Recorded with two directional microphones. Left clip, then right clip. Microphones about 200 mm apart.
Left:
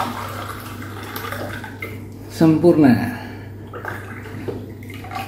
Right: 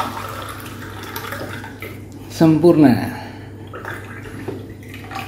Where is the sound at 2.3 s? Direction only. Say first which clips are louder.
Right 1 dB; 25° right (ahead or behind).